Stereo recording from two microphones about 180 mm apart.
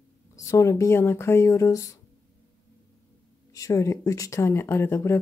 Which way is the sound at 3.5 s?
20° left (ahead or behind).